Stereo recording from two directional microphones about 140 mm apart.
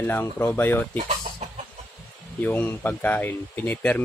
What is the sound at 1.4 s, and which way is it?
Chicken, 50° right (ahead or behind).